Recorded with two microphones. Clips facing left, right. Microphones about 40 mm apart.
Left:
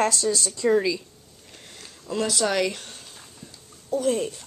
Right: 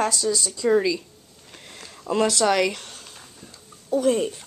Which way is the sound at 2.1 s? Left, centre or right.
Right.